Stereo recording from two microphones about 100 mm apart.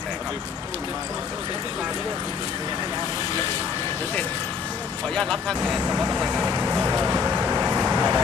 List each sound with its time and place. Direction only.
5.1 s speech: 5° left (ahead or behind)
5.9 s speech: 10° right (ahead or behind)
6.9 s vehicle: 25° right (ahead or behind)
7.2 s vehicle: 15° right (ahead or behind)